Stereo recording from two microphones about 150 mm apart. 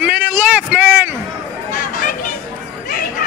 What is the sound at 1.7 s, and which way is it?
Chatter, 60° left (ahead or behind).